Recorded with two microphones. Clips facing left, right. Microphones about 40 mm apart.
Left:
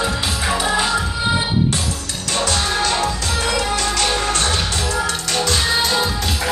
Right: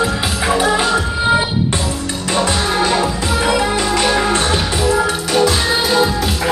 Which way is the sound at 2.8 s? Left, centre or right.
Centre.